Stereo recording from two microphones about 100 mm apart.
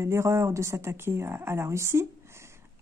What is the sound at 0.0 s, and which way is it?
Speech, 30° right (ahead or behind).